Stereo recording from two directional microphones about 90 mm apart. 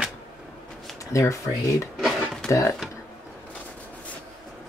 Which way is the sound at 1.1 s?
35° left (ahead or behind).